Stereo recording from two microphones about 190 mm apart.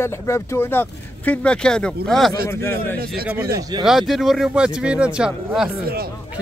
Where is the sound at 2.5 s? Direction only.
15° left (ahead or behind).